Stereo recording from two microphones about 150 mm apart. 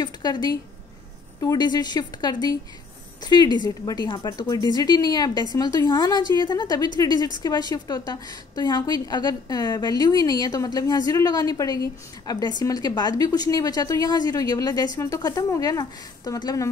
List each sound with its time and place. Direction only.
0.0 s a woman's voice: 25° left (ahead or behind)